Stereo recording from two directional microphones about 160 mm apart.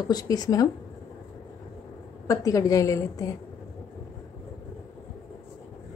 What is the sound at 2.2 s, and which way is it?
A woman's voice, 20° left (ahead or behind).